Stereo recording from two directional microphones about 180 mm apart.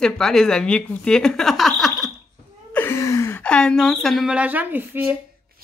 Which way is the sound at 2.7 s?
10° left (ahead or behind).